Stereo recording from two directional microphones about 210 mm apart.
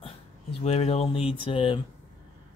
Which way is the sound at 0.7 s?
30° left (ahead or behind).